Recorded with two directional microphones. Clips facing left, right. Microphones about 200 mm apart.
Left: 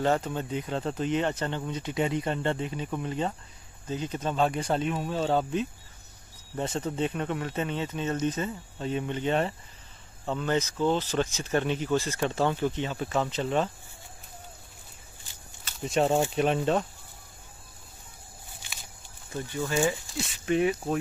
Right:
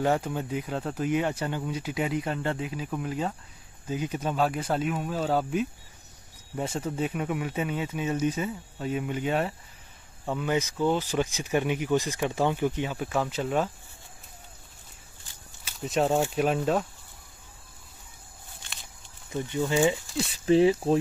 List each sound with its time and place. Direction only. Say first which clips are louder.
0.0 s speech: even; 10° right (ahead or behind)
15.6 s speech: even; centre (ahead or behind)
19.3 s speech: right 3 dB; 20° right (ahead or behind)
20.2 s speech: right 6 dB; 30° right (ahead or behind)